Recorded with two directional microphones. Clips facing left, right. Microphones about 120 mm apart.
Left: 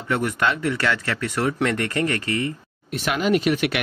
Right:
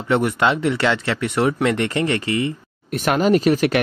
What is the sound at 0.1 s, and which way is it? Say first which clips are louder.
Speech: right 5 dB; 25° right (ahead or behind).